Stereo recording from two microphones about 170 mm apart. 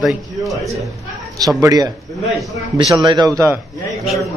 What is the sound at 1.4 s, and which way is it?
Speech, 20° right (ahead or behind).